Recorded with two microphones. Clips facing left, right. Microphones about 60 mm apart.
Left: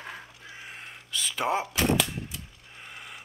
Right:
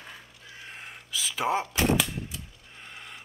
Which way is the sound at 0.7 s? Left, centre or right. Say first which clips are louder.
Right 1 dB; centre.